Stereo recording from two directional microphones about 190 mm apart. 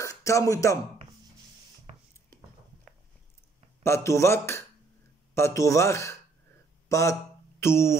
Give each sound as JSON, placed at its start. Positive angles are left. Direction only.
{"t": 0.0, "sound": "speech", "side_deg": 15}
{"t": 1.9, "sound": "a sound", "side_deg": -35}
{"t": 3.8, "sound": "speech", "side_deg": 15}